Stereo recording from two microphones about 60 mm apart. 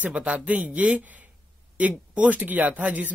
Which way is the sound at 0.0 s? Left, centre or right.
Right.